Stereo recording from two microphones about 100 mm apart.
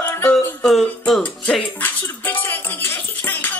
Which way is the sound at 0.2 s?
5° left (ahead or behind).